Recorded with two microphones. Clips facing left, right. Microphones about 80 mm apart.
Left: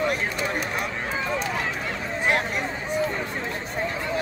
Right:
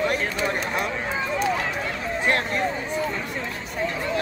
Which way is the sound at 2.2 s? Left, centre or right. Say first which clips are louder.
Even; centre.